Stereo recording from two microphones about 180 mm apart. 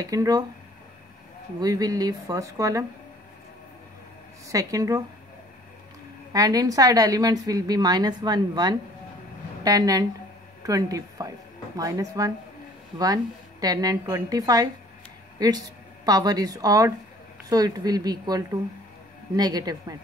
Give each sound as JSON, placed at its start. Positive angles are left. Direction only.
{"t": 0.0, "sound": "a woman's voice", "side_deg": -20}
{"t": 1.6, "sound": "a woman's voice", "side_deg": -20}
{"t": 4.5, "sound": "a woman's voice", "side_deg": -20}
{"t": 6.3, "sound": "a woman's voice", "side_deg": -20}